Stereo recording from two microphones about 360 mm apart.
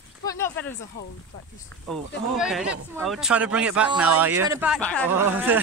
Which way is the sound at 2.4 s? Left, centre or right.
Centre.